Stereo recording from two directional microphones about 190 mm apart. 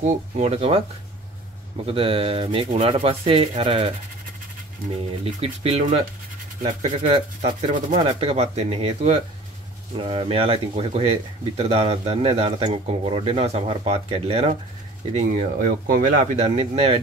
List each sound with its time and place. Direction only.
0.0 s speech: 35° right (ahead or behind)
1.9 s speech: 30° right (ahead or behind)
5.2 s speech: 30° right (ahead or behind)
8.0 s speech: 30° right (ahead or behind)
15.1 s speech: 45° right (ahead or behind)